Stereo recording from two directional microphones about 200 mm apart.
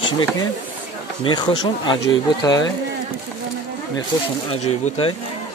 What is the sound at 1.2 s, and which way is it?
Speech, 20° left (ahead or behind).